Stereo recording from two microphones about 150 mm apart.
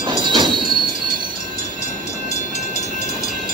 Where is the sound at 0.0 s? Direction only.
30° right (ahead or behind).